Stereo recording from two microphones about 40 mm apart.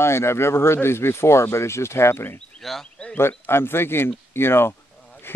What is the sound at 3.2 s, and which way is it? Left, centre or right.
Speech, left.